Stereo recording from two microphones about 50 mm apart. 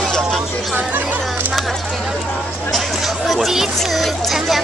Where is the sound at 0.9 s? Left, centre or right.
Right.